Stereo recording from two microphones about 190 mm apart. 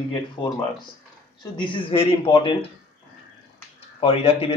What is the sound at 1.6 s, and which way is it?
Speech, 25° left (ahead or behind).